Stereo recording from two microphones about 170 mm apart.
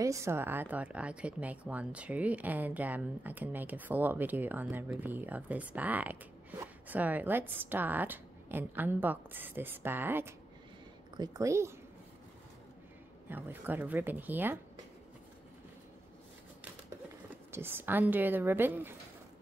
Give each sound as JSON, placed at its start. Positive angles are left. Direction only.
{"t": 0.0, "sound": "speech", "side_deg": -15}
{"t": 13.3, "sound": "speech", "side_deg": -10}
{"t": 17.5, "sound": "speech", "side_deg": -15}